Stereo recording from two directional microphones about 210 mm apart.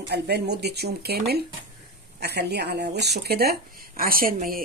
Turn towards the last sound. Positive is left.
turn(degrees=-45)  # may be behind; listen again after turning